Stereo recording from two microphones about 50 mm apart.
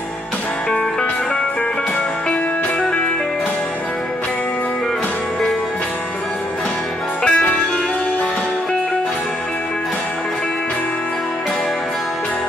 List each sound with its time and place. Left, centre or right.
7.2 s music: left